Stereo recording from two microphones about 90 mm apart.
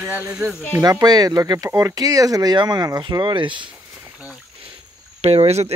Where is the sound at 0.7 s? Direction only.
45° right (ahead or behind); by 3.6 s 65° right (ahead or behind).